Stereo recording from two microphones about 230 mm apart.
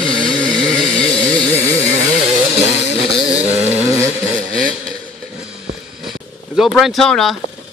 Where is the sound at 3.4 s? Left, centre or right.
Right.